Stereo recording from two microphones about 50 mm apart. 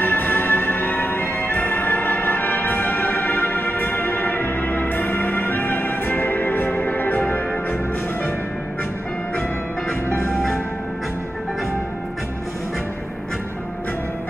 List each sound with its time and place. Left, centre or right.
0.0 s music: left
10.1 s music: centre